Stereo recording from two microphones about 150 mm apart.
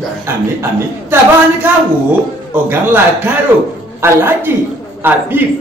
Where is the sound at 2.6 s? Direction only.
15° right (ahead or behind).